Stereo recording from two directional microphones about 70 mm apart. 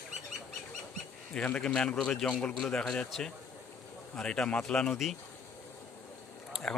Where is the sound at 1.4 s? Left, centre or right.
Centre.